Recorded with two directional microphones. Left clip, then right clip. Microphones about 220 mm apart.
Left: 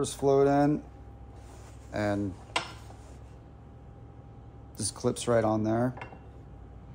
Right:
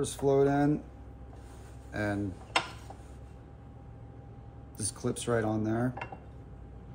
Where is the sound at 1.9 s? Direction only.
35° left (ahead or behind).